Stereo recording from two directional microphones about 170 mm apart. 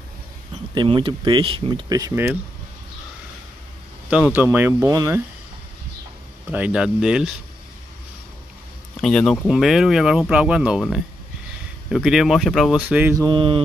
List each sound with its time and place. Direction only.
0.7 s speech: 30° right (ahead or behind)
4.1 s speech: 10° right (ahead or behind)
6.5 s speech: 5° right (ahead or behind)
9.0 s speech: 5° left (ahead or behind)
13.3 s mantra: 30° right (ahead or behind)